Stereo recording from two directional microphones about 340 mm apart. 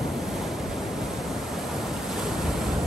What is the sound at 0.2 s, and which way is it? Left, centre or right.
Waves, centre.